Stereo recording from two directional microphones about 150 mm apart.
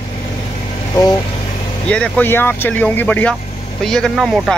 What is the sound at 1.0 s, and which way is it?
Speech, 25° left (ahead or behind).